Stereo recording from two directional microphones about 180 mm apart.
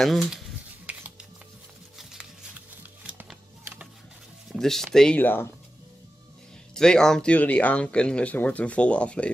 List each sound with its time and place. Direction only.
0.0 s speech: centre (ahead or behind)
0.9 s music: 10° right (ahead or behind)
2.8 s shuffling cards: 10° right (ahead or behind)
4.5 s music: centre (ahead or behind)
4.9 s speech: 5° left (ahead or behind)
6.7 s speech: 5° left (ahead or behind)